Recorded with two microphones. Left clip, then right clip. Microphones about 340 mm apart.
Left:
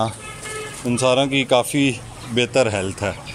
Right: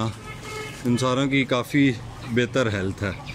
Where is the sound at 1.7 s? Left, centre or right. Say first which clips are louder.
Left 1 dB; left.